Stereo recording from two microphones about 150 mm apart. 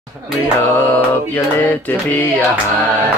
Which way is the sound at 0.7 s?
10° left (ahead or behind).